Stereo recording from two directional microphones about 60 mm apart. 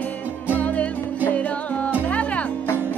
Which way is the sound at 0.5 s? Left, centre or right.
Left.